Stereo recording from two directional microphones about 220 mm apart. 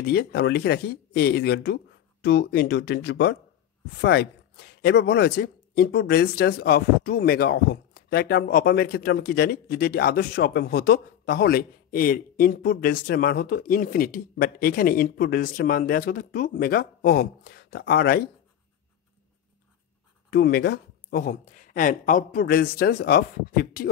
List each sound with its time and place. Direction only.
0.0 s a man's voice: 45° left (ahead or behind)
20.2 s a man's voice: 45° left (ahead or behind)